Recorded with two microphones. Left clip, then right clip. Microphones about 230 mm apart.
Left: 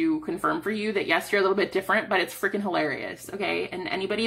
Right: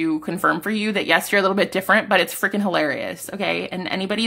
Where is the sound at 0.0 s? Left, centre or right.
Right.